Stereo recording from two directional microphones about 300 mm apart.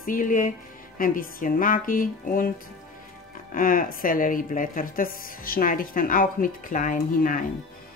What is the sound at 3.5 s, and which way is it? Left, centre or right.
A woman's voice, left.